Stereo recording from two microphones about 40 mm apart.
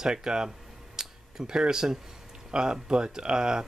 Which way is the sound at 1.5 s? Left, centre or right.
Centre.